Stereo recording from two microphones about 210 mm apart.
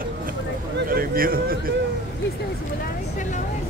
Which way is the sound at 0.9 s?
45° right (ahead or behind).